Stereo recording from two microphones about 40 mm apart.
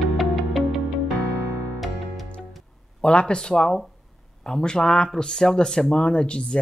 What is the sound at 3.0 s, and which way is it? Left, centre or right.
Speech, left.